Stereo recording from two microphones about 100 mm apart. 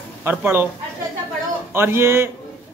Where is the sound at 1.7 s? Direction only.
25° right (ahead or behind).